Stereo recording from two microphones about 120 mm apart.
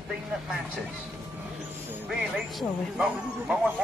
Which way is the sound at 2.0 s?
5° right (ahead or behind).